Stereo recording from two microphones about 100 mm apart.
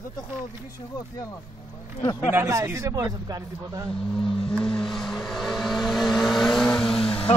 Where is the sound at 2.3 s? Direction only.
30° right (ahead or behind).